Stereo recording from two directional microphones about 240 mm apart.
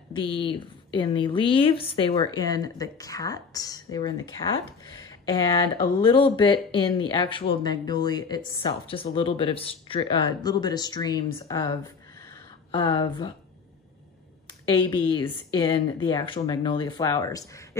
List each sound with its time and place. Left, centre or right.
0.1 s speech: left
12.3 s a sound: centre
15.0 s speech: centre